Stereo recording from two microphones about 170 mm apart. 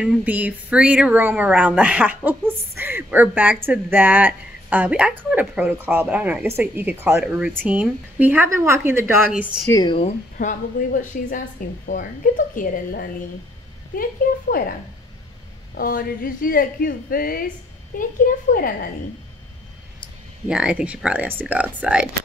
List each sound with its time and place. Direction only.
0.0 s speech: 10° right (ahead or behind)
9.7 s speech: 20° left (ahead or behind)
10.3 s a woman's voice: 50° left (ahead or behind)
14.2 s speech: 60° left (ahead or behind)
15.7 s speech: 60° left (ahead or behind)
20.4 s speech: 5° right (ahead or behind)